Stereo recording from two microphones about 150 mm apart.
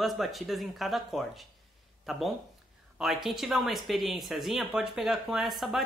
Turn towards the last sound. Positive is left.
turn(degrees=0)  # may be behind; listen again after turning